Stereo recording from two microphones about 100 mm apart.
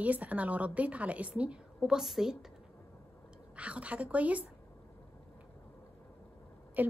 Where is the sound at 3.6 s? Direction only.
15° right (ahead or behind).